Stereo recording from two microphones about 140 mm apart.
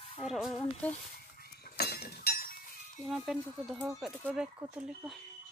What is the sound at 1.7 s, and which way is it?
Chink, 90° left.